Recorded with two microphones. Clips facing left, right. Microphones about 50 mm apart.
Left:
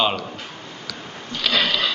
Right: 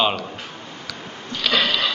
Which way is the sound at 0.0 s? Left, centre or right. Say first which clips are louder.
Even; centre.